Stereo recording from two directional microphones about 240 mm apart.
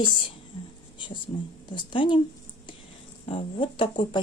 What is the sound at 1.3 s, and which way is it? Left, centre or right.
Speech, left.